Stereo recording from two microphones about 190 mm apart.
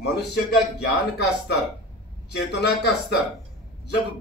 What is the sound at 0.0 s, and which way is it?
A man's voice, 60° left (ahead or behind).